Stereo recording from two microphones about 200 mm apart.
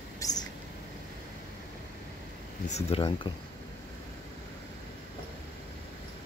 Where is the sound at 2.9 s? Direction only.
25° left (ahead or behind).